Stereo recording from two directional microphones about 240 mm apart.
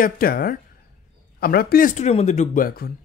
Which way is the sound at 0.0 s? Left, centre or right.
Left.